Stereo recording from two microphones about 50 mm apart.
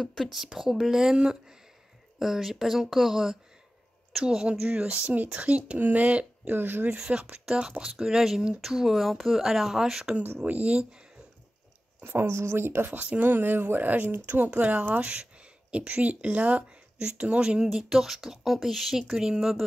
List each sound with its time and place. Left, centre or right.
0.1 s speech: centre; by 5.6 s right
5.6 s speech: right
6.5 s speech: right
7.0 s speech: right
7.8 s speech: centre
10.2 s speech: right
10.7 s speech: centre
12.0 s a woman's voice: right
12.3 s speech: right
13.0 s speech: right; by 19.6 s centre